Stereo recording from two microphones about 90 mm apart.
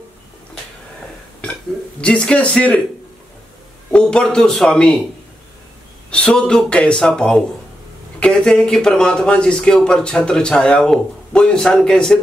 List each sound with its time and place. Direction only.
2.0 s speech: 10° left (ahead or behind)
3.9 s speech: 10° left (ahead or behind)
6.0 s speech: 15° left (ahead or behind)